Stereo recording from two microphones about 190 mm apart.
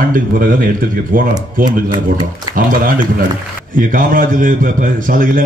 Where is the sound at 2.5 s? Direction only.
50° right (ahead or behind).